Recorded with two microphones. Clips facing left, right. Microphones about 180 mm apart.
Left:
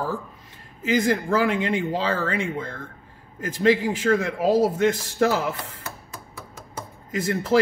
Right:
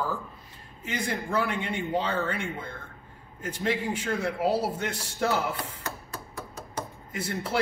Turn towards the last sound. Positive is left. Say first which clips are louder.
# left 7 dB
turn(degrees=90)